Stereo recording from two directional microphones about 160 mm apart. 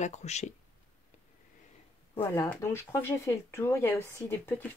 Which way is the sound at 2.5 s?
15° left (ahead or behind).